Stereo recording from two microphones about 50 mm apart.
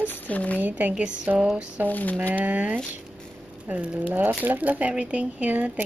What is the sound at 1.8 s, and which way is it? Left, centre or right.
Speech, left.